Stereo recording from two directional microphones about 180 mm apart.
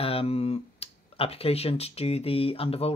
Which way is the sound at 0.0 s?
30° left (ahead or behind).